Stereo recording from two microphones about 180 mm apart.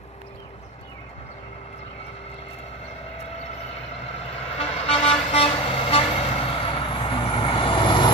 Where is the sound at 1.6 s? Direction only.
35° left (ahead or behind).